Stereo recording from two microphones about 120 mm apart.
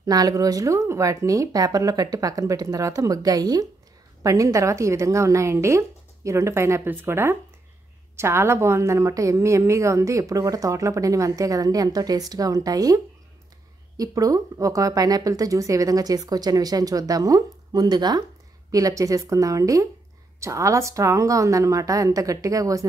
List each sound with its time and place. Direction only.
0.0 s a woman's voice: 30° right (ahead or behind)